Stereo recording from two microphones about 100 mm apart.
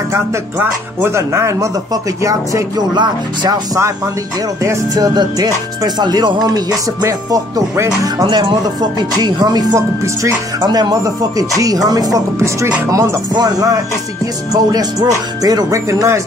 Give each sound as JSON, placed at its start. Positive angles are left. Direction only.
{"t": 0.6, "sound": "speech", "side_deg": -25}
{"t": 2.9, "sound": "speech", "side_deg": -45}
{"t": 4.6, "sound": "speech", "side_deg": -40}
{"t": 8.2, "sound": "speech", "side_deg": -45}